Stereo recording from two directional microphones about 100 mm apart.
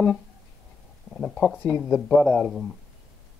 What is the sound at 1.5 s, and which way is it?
Speech, 5° right (ahead or behind).